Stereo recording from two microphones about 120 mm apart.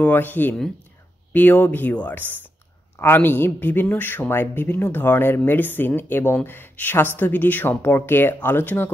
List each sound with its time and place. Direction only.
0.0 s a man's voice: 15° left (ahead or behind)